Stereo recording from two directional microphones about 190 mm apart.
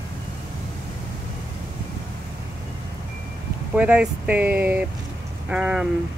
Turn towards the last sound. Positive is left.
turn(degrees=-5)  # may be behind; listen again after turning